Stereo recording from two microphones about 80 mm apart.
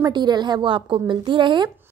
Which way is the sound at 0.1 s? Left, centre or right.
Right.